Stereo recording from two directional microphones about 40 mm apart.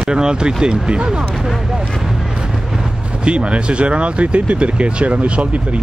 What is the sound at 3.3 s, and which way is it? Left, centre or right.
Speech, right.